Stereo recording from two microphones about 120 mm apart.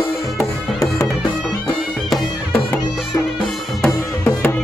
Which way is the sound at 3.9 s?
10° left (ahead or behind).